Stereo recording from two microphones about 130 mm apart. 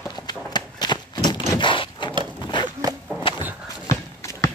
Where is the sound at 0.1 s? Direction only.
35° left (ahead or behind).